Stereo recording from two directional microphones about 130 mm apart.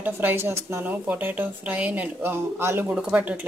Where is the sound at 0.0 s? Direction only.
15° right (ahead or behind).